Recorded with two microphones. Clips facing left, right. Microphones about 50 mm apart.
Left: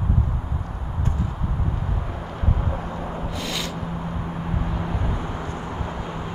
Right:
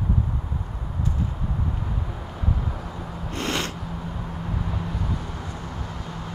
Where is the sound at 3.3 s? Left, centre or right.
Right.